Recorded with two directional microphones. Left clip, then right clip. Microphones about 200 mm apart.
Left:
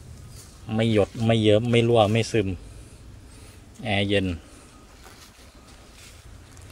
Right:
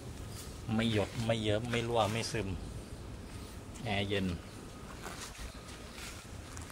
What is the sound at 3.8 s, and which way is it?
Speech, 15° left (ahead or behind).